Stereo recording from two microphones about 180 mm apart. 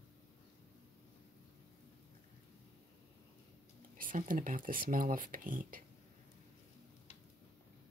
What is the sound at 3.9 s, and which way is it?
Speech, 50° right (ahead or behind).